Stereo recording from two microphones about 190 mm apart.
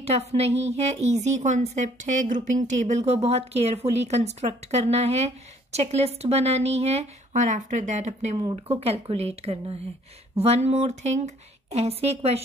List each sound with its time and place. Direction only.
0.0 s a woman's voice: 35° right (ahead or behind)